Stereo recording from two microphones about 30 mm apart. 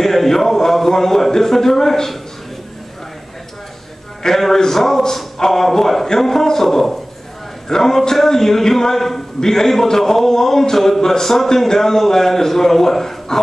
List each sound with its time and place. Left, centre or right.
0.0 s a man's voice: centre
4.2 s a sound: left
4.6 s a man's voice: centre